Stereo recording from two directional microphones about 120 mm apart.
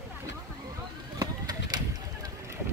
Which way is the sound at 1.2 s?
30° right (ahead or behind).